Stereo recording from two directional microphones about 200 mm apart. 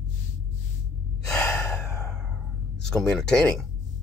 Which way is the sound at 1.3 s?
5° left (ahead or behind).